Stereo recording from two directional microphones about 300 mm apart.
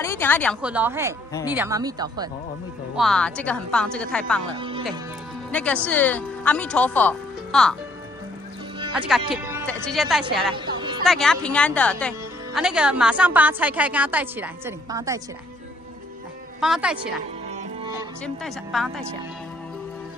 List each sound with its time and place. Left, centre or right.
0.0 s a woman's voice: centre
3.0 s speech: centre
4.6 s speech: centre
5.5 s speech: centre
8.9 s speech: centre
10.5 s music: centre
11.1 s speech: centre
16.5 s speech: centre
18.2 s speech: centre